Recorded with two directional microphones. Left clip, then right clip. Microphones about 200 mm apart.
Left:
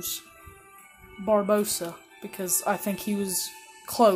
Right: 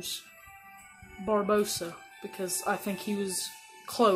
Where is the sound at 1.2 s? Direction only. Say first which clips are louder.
Left 4 dB; 25° left (ahead or behind).